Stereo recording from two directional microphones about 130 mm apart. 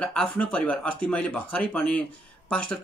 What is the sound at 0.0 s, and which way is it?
Speech, 5° left (ahead or behind).